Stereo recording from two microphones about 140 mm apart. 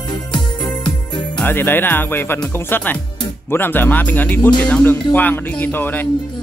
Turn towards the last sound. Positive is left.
turn(degrees=15)  # may be behind; listen again after turning